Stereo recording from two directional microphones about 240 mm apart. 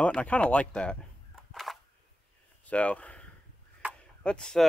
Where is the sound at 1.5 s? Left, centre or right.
Centre.